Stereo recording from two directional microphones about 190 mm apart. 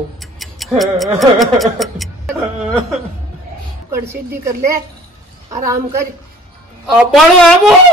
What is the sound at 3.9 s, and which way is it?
A woman's voice, 15° right (ahead or behind).